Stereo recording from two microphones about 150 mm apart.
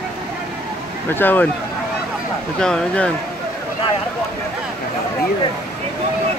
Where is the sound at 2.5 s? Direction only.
5° left (ahead or behind).